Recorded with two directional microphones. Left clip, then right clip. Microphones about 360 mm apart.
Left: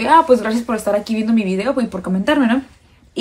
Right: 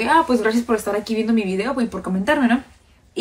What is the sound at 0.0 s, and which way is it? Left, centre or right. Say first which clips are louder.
Speech: left 5 dB; centre.